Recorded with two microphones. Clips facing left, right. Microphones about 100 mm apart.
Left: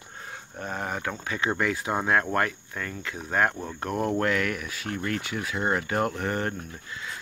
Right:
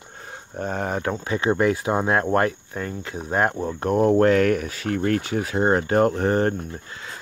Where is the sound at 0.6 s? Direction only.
35° right (ahead or behind).